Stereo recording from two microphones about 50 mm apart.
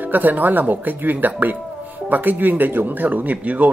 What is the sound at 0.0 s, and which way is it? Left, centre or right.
Speech, right.